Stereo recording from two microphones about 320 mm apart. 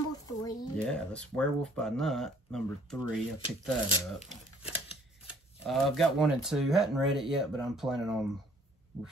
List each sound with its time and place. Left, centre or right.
0.3 s speech: centre
3.0 s speech: centre
5.2 s speech: centre